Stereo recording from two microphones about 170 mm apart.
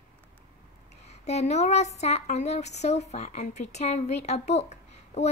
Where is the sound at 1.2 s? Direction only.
40° left (ahead or behind).